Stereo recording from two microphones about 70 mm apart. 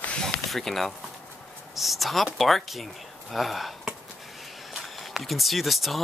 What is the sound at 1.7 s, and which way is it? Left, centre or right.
Speech, centre.